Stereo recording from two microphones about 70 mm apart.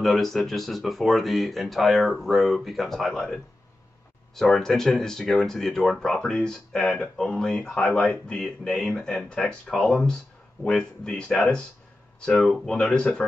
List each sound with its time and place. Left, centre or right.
0.0 s speech: centre
4.4 s speech: centre